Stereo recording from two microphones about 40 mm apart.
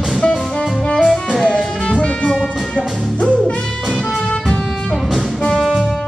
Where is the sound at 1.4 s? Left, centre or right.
Left.